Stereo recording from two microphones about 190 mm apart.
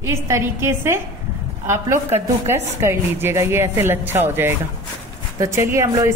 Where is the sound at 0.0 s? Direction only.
15° right (ahead or behind).